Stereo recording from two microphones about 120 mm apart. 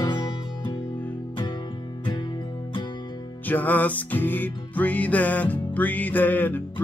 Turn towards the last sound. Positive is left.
turn(degrees=15)  # may be behind; listen again after turning